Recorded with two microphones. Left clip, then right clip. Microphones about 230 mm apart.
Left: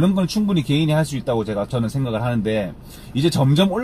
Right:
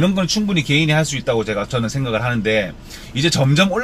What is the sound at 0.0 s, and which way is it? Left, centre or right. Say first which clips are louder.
Speech: right 2 dB; centre.